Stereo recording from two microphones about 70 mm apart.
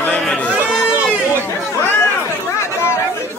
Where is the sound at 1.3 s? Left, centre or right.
Right.